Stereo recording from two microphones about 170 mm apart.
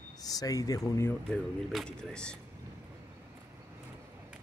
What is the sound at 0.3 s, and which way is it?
Speech, 20° left (ahead or behind).